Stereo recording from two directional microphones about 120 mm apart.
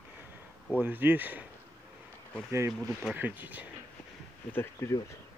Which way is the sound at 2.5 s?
25° right (ahead or behind).